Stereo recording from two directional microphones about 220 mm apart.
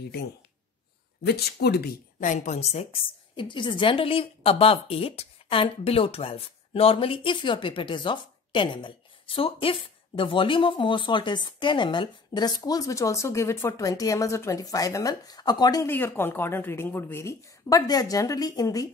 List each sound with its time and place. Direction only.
1.2 s a woman's voice: 45° left (ahead or behind); by 18.9 s 15° left (ahead or behind)